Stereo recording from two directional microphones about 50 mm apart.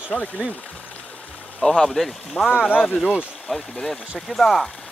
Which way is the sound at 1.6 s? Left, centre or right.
Centre.